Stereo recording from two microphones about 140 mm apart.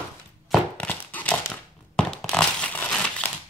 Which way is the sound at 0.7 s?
10° left (ahead or behind).